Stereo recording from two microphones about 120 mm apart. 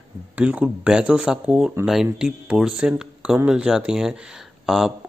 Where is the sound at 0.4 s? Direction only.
10° right (ahead or behind).